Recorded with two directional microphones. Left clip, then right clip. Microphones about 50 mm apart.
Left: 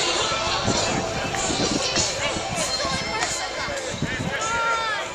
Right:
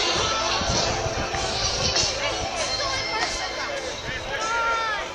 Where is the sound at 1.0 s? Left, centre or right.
Right.